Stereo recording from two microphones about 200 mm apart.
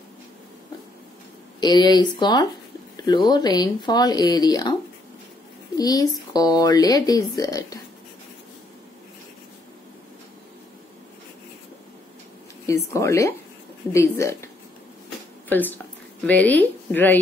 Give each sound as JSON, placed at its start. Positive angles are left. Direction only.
{"t": 1.6, "sound": "speech", "side_deg": 20}
{"t": 5.8, "sound": "speech", "side_deg": 20}
{"t": 12.6, "sound": "speech", "side_deg": 15}